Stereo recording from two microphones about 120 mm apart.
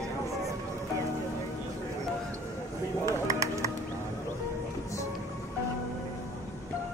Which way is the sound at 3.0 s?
25° right (ahead or behind).